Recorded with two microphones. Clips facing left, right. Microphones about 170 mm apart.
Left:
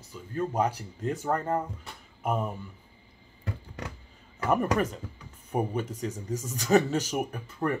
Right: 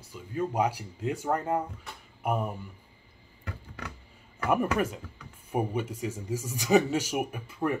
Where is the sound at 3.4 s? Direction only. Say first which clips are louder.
Left 3 dB; 25° left (ahead or behind).